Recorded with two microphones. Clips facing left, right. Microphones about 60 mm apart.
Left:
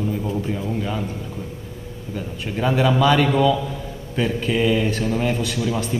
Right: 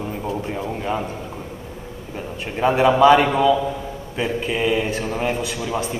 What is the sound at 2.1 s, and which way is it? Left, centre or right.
A man's voice, right.